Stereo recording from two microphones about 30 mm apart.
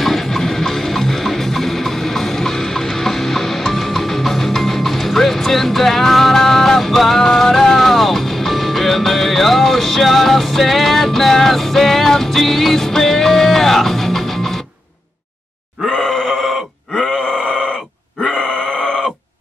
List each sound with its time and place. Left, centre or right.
0.0 s music: centre
15.9 s grunt: left
17.0 s groan: centre
17.3 s a sound: centre
18.3 s grunt: left